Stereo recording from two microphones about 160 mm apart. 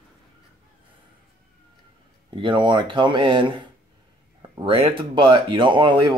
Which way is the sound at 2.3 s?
30° right (ahead or behind).